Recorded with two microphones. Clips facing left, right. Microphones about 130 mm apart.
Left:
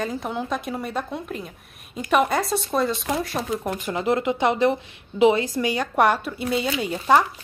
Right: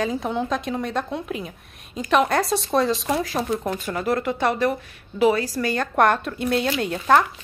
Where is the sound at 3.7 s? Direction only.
20° left (ahead or behind).